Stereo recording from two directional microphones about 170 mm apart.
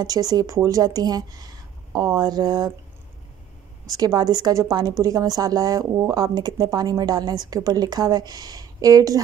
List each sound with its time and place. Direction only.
0.0 s a woman's voice: 20° right (ahead or behind)
3.8 s a woman's voice: 20° right (ahead or behind)